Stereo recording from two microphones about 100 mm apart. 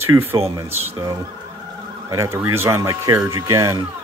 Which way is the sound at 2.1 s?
30° right (ahead or behind).